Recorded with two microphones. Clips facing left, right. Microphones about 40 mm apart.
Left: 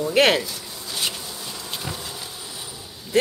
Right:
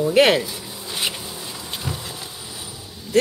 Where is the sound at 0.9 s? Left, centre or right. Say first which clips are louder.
Right 2 dB; centre.